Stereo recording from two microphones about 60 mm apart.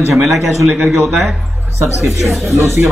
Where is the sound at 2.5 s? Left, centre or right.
Right.